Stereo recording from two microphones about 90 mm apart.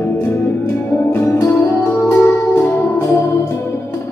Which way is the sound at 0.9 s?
25° left (ahead or behind).